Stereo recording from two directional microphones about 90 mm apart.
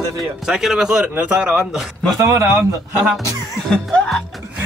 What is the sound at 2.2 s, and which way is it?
Speech, 35° right (ahead or behind).